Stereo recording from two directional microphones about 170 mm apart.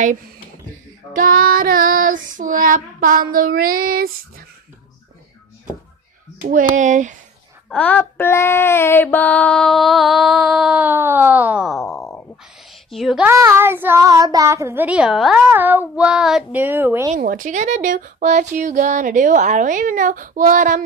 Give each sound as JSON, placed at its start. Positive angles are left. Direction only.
{"t": 1.1, "sound": "child singing", "side_deg": -55}
{"t": 6.5, "sound": "speech", "side_deg": -45}
{"t": 7.7, "sound": "a sound", "side_deg": 10}
{"t": 13.3, "sound": "a child's voice", "side_deg": -15}
{"t": 17.3, "sound": "speech", "side_deg": -50}